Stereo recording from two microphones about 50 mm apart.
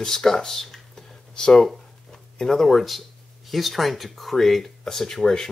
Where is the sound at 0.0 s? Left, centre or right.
Centre.